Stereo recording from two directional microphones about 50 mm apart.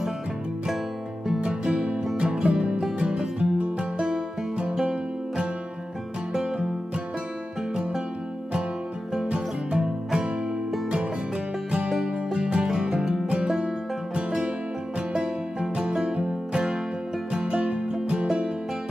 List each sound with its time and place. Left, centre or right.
1.4 s music: centre
9.3 s music: centre
11.9 s music: centre
12.4 s music: centre
15.7 s music: centre